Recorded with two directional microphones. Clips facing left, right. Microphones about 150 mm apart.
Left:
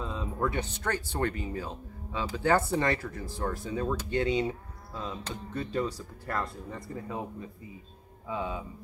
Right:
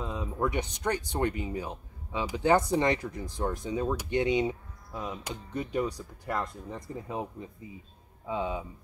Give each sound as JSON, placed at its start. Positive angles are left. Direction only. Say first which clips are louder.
{"t": 0.0, "sound": "speech", "louder": "right 1 dB", "side_deg": -15}